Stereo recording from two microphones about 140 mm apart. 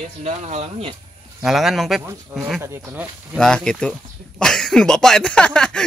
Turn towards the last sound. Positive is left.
turn(degrees=5)  # may be behind; listen again after turning